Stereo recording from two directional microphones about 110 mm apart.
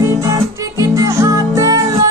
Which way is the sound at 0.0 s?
25° right (ahead or behind).